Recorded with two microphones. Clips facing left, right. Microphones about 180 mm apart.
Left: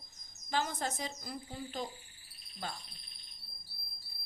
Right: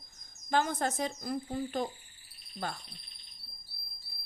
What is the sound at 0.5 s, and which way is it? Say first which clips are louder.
A woman's voice: right 5 dB; 55° right (ahead or behind).